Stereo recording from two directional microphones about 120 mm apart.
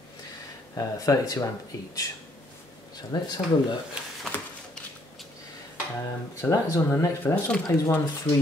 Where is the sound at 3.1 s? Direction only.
35° left (ahead or behind).